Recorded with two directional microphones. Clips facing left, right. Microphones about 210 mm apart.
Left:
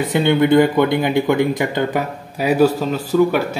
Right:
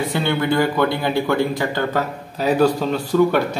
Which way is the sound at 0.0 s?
20° left (ahead or behind).